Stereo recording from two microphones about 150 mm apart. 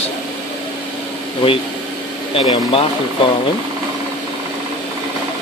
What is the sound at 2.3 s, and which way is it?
Speech, 40° left (ahead or behind).